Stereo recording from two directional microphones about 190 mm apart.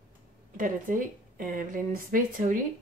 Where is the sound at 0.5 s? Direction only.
45° right (ahead or behind).